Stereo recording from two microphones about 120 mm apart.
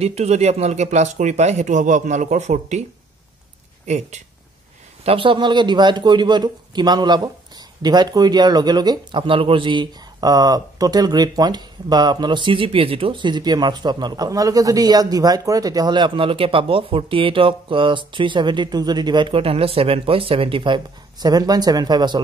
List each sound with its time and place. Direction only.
0.0 s speech: 65° right (ahead or behind)
3.8 s speech: 70° right (ahead or behind)
5.0 s a man's voice: 45° right (ahead or behind)